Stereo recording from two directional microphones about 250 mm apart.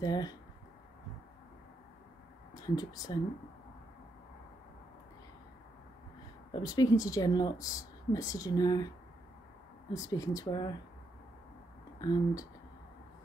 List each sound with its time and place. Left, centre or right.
0.0 s speech: centre
2.5 s speech: centre
6.5 s speech: centre
9.9 s speech: centre
12.0 s speech: centre